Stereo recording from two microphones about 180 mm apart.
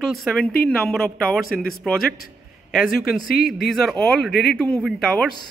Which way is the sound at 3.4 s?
60° left (ahead or behind).